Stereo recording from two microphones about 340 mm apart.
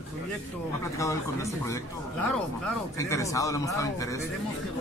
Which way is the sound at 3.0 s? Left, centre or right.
Centre.